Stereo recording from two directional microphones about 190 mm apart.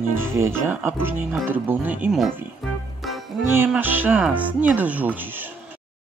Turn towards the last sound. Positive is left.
turn(degrees=-10)  # may be behind; listen again after turning